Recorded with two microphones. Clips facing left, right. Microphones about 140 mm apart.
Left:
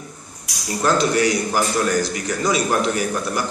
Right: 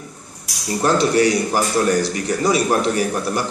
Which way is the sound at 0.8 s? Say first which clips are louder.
Right 2 dB; 30° right (ahead or behind).